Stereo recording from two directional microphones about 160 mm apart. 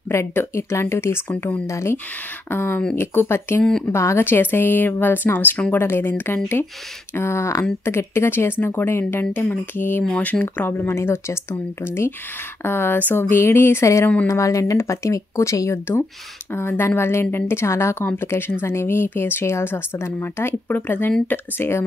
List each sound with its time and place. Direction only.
0.1 s a woman's voice: 15° left (ahead or behind)